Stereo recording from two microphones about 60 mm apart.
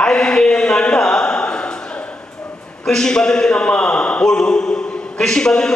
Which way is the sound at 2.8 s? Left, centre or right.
Centre.